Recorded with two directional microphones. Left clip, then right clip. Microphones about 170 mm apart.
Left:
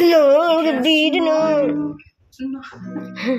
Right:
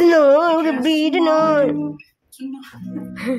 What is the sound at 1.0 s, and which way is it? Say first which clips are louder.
Music: right 1 dB; 20° right (ahead or behind).